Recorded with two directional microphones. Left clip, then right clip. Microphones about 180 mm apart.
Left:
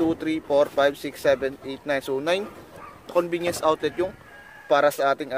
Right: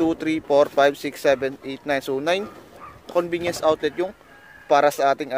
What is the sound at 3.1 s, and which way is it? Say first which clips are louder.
Speech: right 1 dB; 15° right (ahead or behind).